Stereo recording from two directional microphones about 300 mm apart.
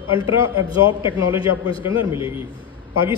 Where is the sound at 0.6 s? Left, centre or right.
Centre.